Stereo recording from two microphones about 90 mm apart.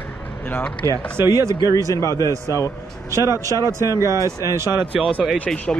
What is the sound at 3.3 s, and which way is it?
Speech, 35° right (ahead or behind).